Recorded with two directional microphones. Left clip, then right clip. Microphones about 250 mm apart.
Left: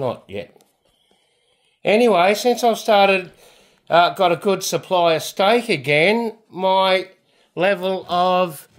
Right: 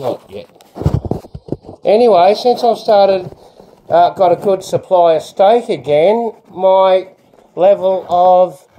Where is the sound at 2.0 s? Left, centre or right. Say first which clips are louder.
Right 6 dB; left.